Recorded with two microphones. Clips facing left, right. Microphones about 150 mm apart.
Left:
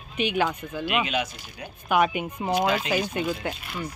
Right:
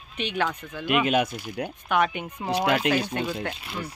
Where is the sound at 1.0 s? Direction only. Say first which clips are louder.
Right 5 dB; 50° right (ahead or behind).